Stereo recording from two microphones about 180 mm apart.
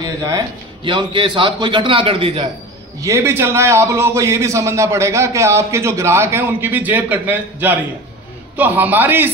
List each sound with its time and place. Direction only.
0.0 s a sound: 20° right (ahead or behind)
0.8 s a man's voice: 25° right (ahead or behind)
3.0 s a man's voice: 15° right (ahead or behind)